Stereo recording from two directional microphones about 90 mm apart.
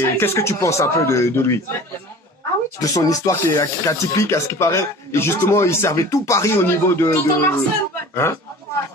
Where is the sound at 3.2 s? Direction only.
30° left (ahead or behind).